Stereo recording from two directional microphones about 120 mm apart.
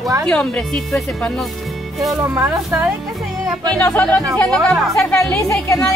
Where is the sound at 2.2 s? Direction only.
25° right (ahead or behind).